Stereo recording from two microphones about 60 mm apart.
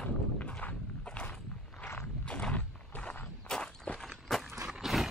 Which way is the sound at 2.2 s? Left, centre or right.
Left.